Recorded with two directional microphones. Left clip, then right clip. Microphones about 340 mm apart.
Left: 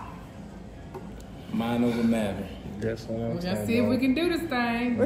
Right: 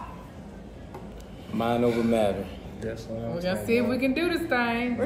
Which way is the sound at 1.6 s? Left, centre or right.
Centre.